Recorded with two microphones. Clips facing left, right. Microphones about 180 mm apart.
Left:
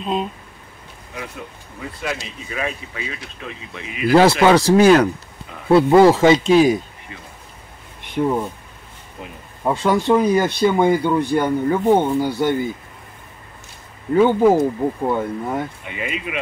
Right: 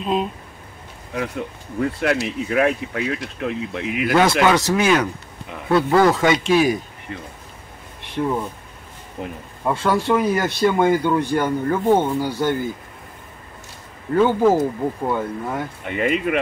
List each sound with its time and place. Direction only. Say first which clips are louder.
0.0 s speech: right 1 dB; centre (ahead or behind)
1.8 s speech: right 8 dB; 65° right (ahead or behind)
4.1 s speech: left 4 dB; 30° left (ahead or behind)
7.1 s speech: right 7 dB; 55° right (ahead or behind)
8.2 s speech: left 3 dB; 15° left (ahead or behind)
9.7 s speech: left 2 dB; 20° left (ahead or behind)
14.1 s speech: left 2 dB; 15° left (ahead or behind)
15.8 s speech: right 7 dB; 50° right (ahead or behind)